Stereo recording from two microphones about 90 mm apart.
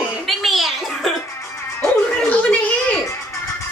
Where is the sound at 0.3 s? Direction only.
Centre (ahead or behind).